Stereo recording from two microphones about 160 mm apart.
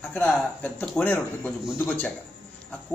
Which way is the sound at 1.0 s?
10° left (ahead or behind).